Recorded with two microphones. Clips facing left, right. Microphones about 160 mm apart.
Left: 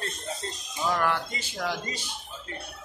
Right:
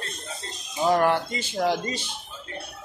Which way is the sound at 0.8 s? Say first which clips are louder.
Right 6 dB; 35° right (ahead or behind).